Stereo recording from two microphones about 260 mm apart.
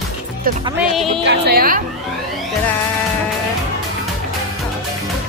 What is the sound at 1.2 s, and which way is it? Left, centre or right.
Speech, right.